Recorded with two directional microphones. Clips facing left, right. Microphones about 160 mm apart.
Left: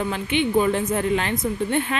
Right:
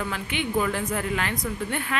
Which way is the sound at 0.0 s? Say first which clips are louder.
Left 6 dB; 25° left (ahead or behind).